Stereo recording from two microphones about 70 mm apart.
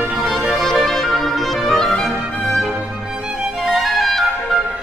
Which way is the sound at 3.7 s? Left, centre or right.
Centre.